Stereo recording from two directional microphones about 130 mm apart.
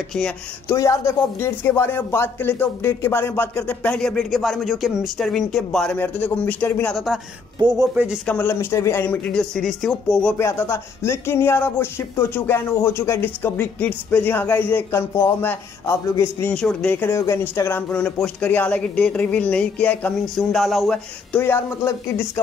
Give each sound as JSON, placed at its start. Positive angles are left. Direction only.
{"t": 0.7, "sound": "speech", "side_deg": 25}
{"t": 7.5, "sound": "speech", "side_deg": -30}
{"t": 7.9, "sound": "speech", "side_deg": -10}
{"t": 8.3, "sound": "speech", "side_deg": 15}
{"t": 10.3, "sound": "speech", "side_deg": 20}
{"t": 16.5, "sound": "speech", "side_deg": 5}
{"t": 16.9, "sound": "speech", "side_deg": 20}
{"t": 21.4, "sound": "speech", "side_deg": 15}